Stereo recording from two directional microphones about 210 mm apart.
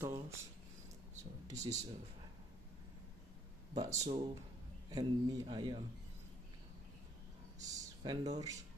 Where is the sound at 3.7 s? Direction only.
15° right (ahead or behind).